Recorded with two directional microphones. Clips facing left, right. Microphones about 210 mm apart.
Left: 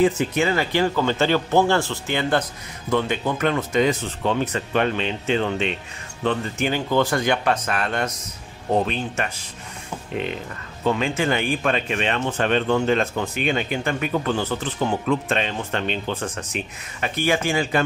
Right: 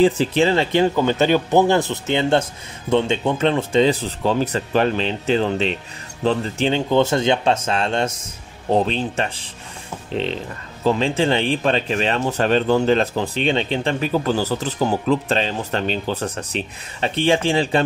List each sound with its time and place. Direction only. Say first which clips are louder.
0.0 s a man's voice: right 3 dB; 30° right (ahead or behind)